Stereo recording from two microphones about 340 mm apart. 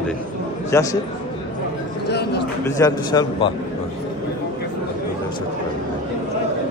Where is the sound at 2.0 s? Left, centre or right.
Left.